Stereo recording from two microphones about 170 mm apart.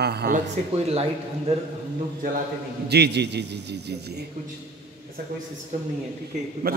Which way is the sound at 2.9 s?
80° right.